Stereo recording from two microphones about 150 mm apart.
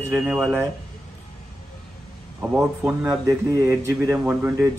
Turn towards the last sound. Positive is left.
turn(degrees=-15)  # may be behind; listen again after turning